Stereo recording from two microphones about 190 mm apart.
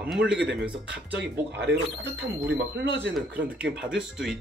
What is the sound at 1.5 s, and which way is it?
Speech, 65° right (ahead or behind).